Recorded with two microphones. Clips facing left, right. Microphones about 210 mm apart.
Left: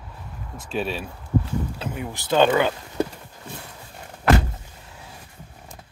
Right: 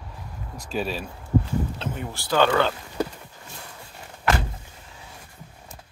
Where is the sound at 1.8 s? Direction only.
10° left (ahead or behind).